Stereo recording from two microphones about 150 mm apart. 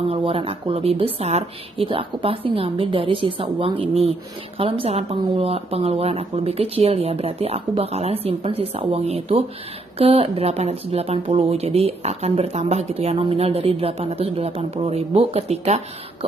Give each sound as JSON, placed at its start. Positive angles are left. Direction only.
{"t": 0.1, "sound": "speech", "side_deg": -40}